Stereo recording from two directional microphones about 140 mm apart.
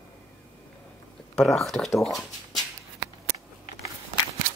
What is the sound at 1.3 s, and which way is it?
Speech, 5° left (ahead or behind).